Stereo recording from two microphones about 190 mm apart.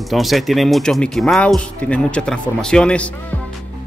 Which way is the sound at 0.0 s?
Centre (ahead or behind).